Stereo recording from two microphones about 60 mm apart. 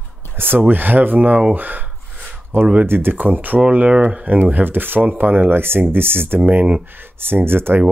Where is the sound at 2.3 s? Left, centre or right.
Right.